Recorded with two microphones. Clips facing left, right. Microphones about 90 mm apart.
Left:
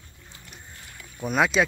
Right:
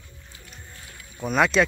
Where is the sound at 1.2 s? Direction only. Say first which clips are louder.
Right 2 dB; 5° left (ahead or behind).